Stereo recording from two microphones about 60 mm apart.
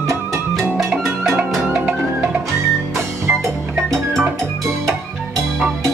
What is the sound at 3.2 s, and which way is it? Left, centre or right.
Music, right.